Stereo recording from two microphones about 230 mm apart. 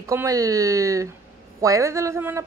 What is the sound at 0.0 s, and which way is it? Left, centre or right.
Speech, centre.